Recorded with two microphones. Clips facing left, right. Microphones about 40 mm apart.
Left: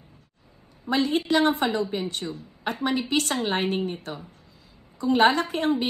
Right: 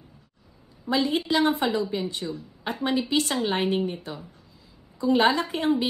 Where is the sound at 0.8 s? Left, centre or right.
Left.